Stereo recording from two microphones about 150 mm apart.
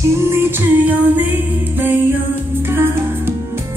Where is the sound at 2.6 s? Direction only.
15° right (ahead or behind).